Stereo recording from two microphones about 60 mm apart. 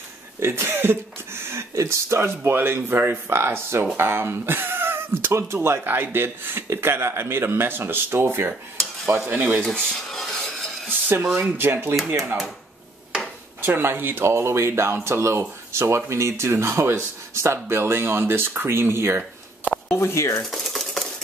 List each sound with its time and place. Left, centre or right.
0.4 s a man's voice: right
9.3 s a man's voice: right
9.8 s rub: centre
10.9 s a sound: right
11.5 s a man's voice: right
13.6 s speech: right
19.9 s speech: left
20.4 s a sound: centre